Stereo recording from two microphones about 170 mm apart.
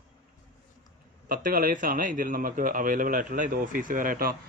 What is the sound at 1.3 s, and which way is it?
A man's voice, 55° right (ahead or behind).